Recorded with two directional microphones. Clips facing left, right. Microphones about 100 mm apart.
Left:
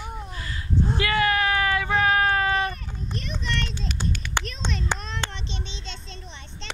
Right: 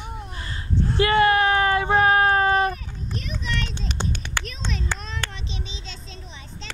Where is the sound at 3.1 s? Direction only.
Centre (ahead or behind).